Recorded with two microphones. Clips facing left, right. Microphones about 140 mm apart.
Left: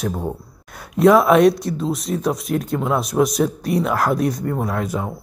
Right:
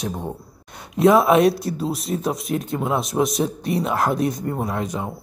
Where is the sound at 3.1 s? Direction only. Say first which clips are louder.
Left 4 dB; 10° right (ahead or behind).